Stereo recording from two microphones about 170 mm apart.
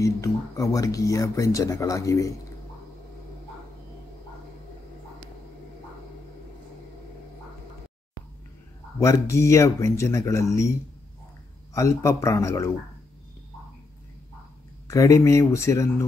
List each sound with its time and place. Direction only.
0.0 s speech: 20° left (ahead or behind)
9.0 s speech: 15° left (ahead or behind)
14.9 s speech: 20° left (ahead or behind)